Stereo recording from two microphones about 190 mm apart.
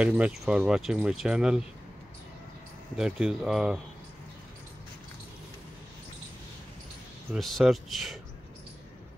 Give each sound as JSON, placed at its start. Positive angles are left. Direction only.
{"t": 0.0, "sound": "speech", "side_deg": -5}
{"t": 3.0, "sound": "speech", "side_deg": -5}
{"t": 7.3, "sound": "speech", "side_deg": 0}